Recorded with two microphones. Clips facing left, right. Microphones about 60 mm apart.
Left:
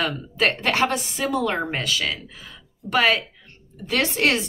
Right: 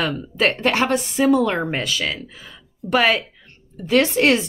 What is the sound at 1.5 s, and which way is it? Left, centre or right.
Speech, centre.